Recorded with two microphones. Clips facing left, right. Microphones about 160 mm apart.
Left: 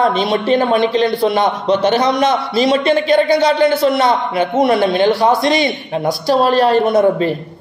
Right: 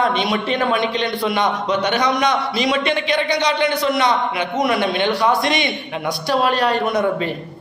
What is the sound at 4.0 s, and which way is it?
A man's voice, 30° left (ahead or behind).